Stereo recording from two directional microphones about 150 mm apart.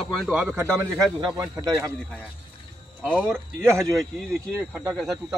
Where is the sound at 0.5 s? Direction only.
15° right (ahead or behind).